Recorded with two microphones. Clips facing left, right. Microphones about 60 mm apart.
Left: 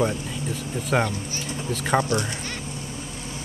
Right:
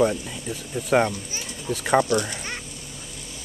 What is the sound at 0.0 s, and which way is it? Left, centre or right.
Speech, left.